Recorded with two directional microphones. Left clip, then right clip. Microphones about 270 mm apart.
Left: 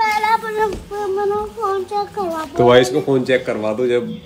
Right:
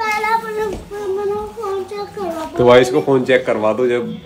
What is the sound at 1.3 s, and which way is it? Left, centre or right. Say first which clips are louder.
Humming: left 2 dB; centre.